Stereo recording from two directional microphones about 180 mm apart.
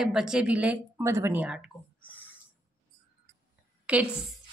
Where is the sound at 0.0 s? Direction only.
5° right (ahead or behind).